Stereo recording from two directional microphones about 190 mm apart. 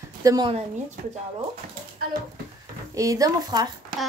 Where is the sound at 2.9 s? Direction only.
15° right (ahead or behind).